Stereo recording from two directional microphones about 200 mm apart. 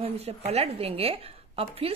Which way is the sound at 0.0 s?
30° right (ahead or behind).